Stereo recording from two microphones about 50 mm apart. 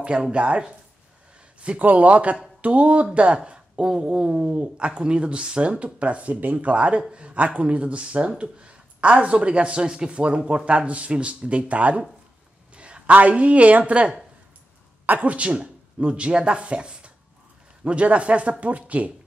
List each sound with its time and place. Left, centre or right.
0.0 s speech: right